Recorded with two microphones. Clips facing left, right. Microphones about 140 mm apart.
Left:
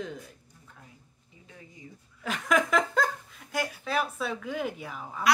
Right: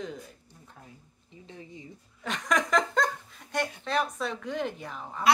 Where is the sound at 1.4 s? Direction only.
25° right (ahead or behind).